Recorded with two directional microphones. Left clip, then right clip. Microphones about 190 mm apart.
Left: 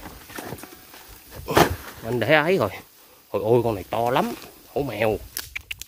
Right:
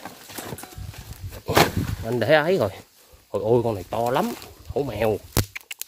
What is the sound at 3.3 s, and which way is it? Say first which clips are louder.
Speech: left 1 dB; 15° right (ahead or behind).